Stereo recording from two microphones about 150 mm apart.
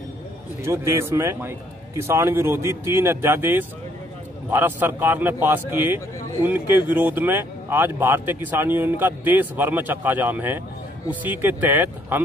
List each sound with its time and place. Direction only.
0.7 s speech: 15° right (ahead or behind)